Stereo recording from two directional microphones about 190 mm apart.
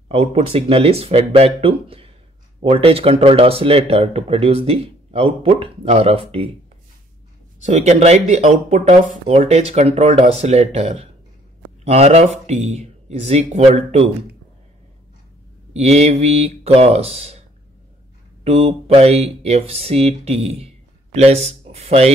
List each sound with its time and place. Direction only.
0.1 s speech: 30° right (ahead or behind)
7.6 s speech: 35° right (ahead or behind)
15.7 s speech: 35° right (ahead or behind)
18.4 s speech: 30° right (ahead or behind)